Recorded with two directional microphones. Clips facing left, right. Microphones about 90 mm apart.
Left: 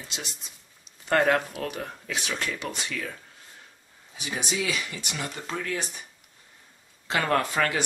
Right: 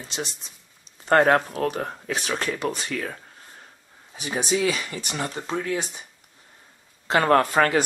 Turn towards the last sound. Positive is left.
turn(degrees=-45)  # may be behind; listen again after turning